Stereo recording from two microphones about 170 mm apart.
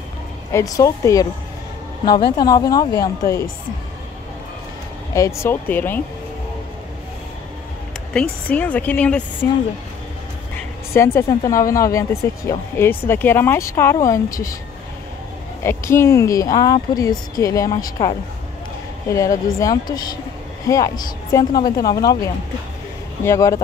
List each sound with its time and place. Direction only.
0.5 s speech: 20° left (ahead or behind)
2.3 s speech: 25° left (ahead or behind)
5.1 s speech: 15° left (ahead or behind)
8.1 s speech: 5° left (ahead or behind)
11.1 s speech: 20° left (ahead or behind)
15.6 s speech: 15° left (ahead or behind)
19.1 s speech: 20° left (ahead or behind)